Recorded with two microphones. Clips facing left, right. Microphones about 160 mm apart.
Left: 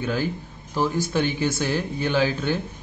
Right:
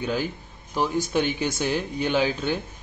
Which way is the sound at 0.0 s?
15° right (ahead or behind).